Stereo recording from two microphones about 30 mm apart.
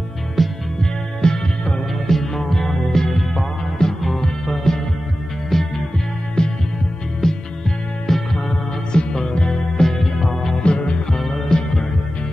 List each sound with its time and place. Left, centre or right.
0.4 s music: centre
1.2 s music: left
2.0 s music: centre
6.4 s music: left
8.9 s music: left
9.8 s music: centre
10.6 s music: left
11.1 s music: centre